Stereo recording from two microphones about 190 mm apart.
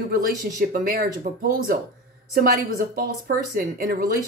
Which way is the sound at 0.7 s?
45° right (ahead or behind).